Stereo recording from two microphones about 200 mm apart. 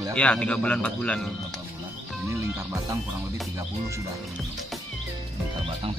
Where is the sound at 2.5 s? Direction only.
15° right (ahead or behind).